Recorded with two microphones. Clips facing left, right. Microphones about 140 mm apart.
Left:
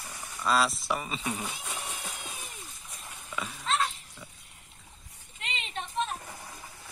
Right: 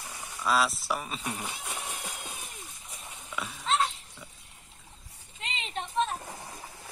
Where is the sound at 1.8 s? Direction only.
Centre (ahead or behind).